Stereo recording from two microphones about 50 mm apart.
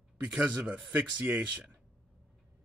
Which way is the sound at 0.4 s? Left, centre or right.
Right.